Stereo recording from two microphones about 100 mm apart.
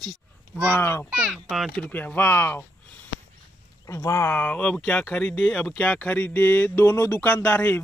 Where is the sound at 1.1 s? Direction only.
5° right (ahead or behind).